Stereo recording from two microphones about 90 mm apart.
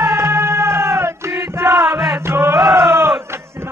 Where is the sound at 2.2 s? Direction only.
30° right (ahead or behind).